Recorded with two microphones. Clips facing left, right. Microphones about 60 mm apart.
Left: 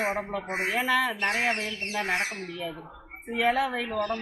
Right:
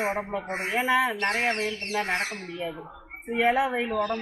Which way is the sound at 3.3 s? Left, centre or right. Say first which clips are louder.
Right 2 dB; centre.